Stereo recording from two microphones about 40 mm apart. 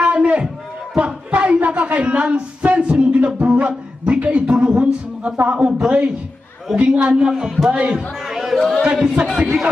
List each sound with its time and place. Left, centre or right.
0.0 s a sound: right
5.4 s speech: right
5.7 s speech: right
7.7 s speech: right
8.3 s a sound: centre
8.5 s a man's voice: centre
8.8 s a man's voice: right